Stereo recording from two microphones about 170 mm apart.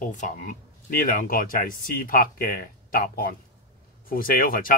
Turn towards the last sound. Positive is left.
turn(degrees=55)  # may be behind; listen again after turning